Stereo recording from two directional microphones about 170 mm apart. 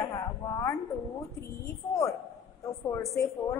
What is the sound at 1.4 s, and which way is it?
Speech, 20° left (ahead or behind).